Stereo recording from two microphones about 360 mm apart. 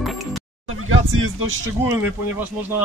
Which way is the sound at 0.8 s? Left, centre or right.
Right.